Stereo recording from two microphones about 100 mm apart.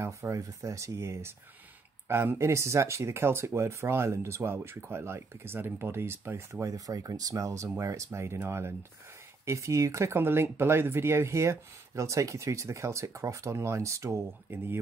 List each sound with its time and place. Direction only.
0.0 s speech: 30° right (ahead or behind)